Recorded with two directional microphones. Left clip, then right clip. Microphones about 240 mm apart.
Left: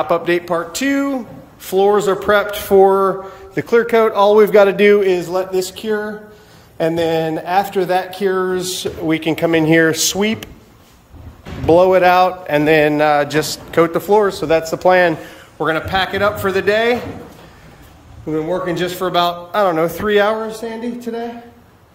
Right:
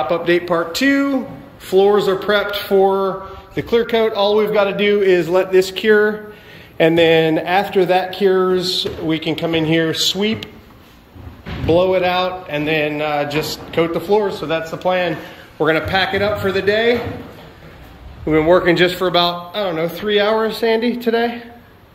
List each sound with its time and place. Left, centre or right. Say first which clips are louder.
0.0 s speech: even; centre
4.7 s mantra: left 5 dB; centre
5.0 s speech: right 2 dB; centre
11.6 s mantra: left 4 dB; centre
15.6 s speech: right 1 dB; centre
18.2 s speech: right 7 dB; centre
19.5 s speech: left 5 dB; centre